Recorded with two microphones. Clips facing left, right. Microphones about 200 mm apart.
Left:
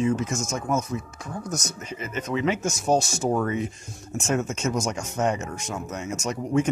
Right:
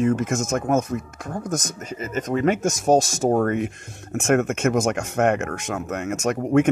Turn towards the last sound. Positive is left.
turn(degrees=-60)  # may be behind; listen again after turning